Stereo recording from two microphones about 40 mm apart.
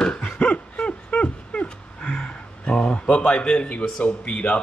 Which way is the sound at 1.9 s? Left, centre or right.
Centre.